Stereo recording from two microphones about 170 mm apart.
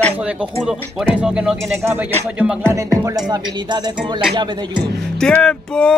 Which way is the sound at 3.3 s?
25° right (ahead or behind).